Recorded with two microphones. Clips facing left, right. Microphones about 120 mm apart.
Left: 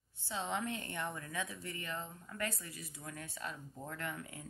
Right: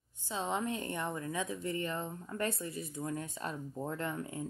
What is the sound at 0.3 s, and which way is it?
A woman's voice, 20° right (ahead or behind).